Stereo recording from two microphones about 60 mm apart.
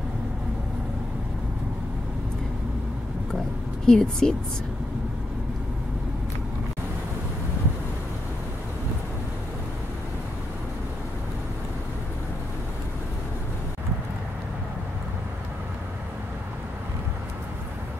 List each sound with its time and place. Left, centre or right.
3.8 s a woman's voice: centre